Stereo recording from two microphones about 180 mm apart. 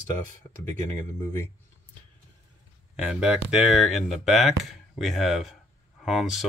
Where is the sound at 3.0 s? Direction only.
5° right (ahead or behind).